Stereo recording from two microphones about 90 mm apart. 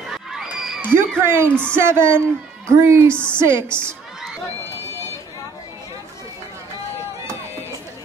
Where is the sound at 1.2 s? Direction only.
25° right (ahead or behind).